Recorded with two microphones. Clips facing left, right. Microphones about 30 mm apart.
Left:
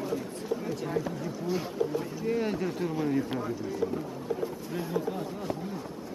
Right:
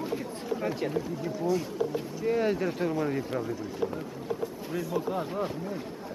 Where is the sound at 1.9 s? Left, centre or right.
Centre.